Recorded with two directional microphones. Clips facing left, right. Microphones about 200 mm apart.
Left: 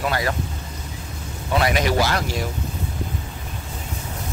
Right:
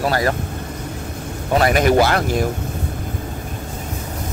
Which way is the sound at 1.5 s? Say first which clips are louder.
Right 5 dB; 45° right (ahead or behind).